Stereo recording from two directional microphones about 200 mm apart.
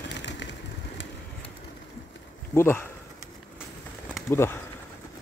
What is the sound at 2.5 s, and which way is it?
Speech, 10° left (ahead or behind).